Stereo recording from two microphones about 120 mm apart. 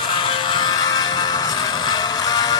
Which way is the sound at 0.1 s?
40° left (ahead or behind).